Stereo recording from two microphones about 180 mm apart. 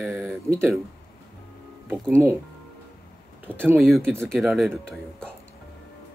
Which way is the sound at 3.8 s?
Centre (ahead or behind).